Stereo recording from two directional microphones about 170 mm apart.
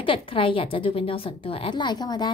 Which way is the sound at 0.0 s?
30° left (ahead or behind).